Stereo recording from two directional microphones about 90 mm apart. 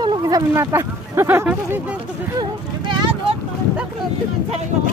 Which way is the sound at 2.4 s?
60° right (ahead or behind).